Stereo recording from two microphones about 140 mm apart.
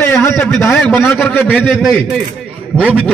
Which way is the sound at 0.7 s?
5° left (ahead or behind).